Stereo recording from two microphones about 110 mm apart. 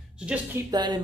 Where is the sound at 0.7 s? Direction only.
40° right (ahead or behind).